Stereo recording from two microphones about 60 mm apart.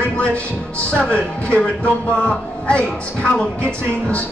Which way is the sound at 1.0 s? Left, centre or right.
Centre.